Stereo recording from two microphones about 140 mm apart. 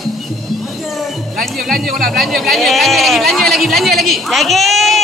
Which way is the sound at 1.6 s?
Centre (ahead or behind).